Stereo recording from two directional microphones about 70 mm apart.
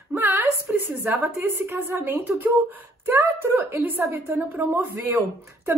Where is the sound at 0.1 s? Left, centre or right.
Right.